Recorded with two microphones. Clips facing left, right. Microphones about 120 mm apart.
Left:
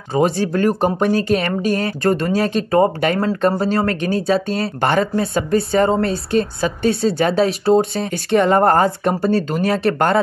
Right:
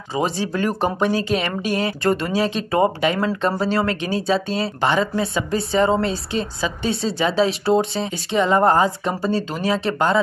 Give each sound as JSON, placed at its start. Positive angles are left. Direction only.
{"t": 0.1, "sound": "speech", "side_deg": 50}